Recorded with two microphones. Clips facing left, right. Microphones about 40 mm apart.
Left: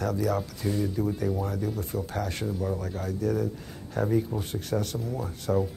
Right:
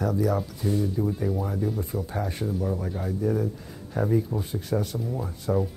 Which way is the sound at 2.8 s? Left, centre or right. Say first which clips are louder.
Right 2 dB; centre.